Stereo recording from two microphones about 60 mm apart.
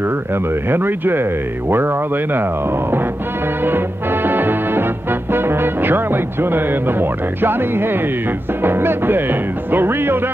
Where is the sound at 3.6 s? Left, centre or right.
Right.